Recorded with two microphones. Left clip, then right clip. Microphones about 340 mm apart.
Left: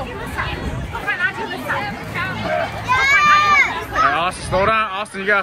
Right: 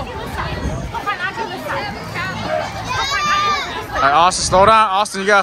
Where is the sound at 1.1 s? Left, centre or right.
Centre.